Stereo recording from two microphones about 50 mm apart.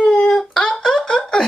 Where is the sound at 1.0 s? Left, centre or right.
Left.